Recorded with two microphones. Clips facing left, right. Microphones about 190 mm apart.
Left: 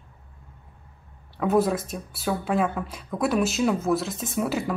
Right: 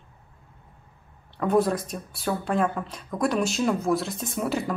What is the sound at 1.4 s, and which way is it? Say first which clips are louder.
Speech: even; 5° left (ahead or behind).